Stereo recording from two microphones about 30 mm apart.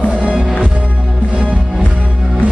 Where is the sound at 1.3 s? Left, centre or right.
Right.